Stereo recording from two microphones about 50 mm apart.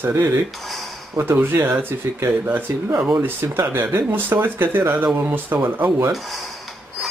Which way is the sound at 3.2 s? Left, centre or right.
Right.